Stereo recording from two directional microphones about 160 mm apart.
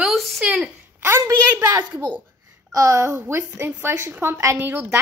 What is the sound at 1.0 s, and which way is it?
A woman's voice, 15° right (ahead or behind).